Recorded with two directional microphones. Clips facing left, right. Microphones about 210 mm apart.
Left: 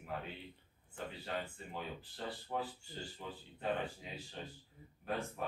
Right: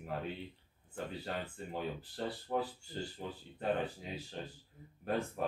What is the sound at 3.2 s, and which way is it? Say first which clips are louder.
Speech: right 1 dB; 40° right (ahead or behind).